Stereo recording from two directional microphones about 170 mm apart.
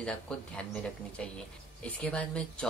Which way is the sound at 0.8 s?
5° left (ahead or behind).